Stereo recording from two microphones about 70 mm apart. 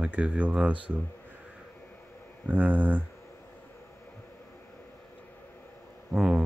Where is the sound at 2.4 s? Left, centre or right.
Right.